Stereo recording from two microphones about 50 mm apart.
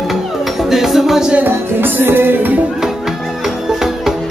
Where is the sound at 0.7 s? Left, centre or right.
Centre.